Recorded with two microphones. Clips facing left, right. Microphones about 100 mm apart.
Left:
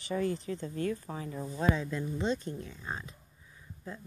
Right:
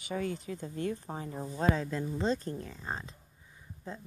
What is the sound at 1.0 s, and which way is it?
Speech, 30° right (ahead or behind).